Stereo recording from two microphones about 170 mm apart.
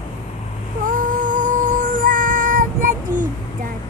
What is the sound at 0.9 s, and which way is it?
Music, 50° right (ahead or behind).